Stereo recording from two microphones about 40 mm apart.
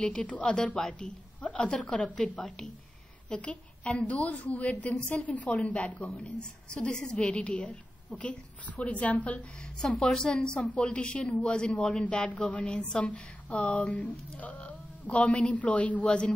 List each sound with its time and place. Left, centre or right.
0.0 s a woman's voice: left
6.2 s a woman's voice: left
10.0 s a woman's voice: centre